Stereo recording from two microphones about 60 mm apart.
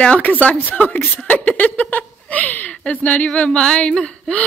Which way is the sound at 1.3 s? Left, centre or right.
Left.